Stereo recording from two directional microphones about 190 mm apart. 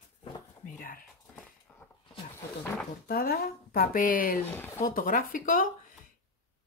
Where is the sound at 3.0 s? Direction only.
55° left (ahead or behind).